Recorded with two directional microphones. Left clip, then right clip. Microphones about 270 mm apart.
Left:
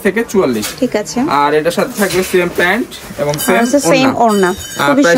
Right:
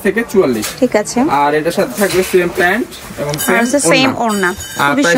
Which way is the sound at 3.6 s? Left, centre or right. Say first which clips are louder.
Even; centre.